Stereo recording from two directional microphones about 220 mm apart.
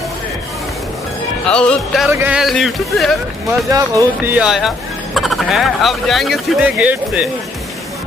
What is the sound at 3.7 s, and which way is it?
Speech, 15° right (ahead or behind).